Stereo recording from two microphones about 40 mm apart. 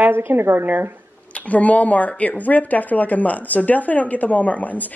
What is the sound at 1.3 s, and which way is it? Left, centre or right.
Speech, left.